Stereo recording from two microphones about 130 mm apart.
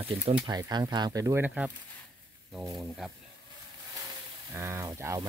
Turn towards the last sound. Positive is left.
turn(degrees=-25)  # may be behind; listen again after turning